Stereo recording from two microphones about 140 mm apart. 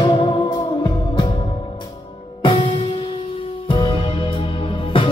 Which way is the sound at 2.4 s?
40° left (ahead or behind).